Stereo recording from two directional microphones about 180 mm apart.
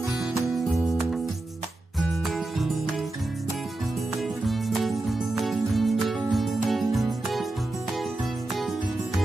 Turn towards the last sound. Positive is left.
turn(degrees=0)  # may be behind; listen again after turning